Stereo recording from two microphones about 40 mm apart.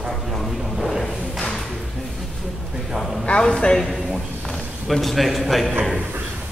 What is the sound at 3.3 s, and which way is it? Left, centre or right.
Speech, left.